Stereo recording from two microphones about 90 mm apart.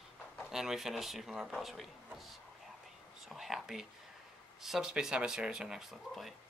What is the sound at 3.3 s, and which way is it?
Whispering, 5° right (ahead or behind).